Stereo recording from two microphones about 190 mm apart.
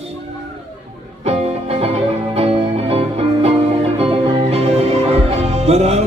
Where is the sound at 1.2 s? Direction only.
35° right (ahead or behind).